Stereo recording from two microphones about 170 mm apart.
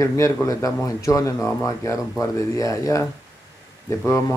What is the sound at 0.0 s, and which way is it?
Speech, 15° left (ahead or behind).